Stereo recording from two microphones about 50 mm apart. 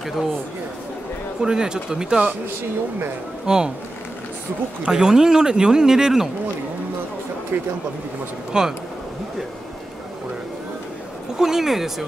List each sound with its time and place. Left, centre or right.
1.4 s speech: centre
3.4 s speech: centre
4.8 s speech: centre
7.5 s speech: right
8.5 s speech: centre
11.3 s speech: centre